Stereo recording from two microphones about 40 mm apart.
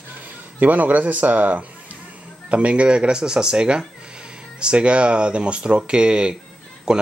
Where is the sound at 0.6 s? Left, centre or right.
Right.